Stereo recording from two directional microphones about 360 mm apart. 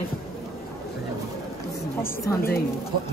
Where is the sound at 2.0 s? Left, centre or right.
Centre.